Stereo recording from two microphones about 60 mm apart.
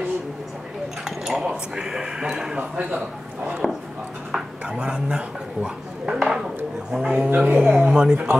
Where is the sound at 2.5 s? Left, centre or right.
Right.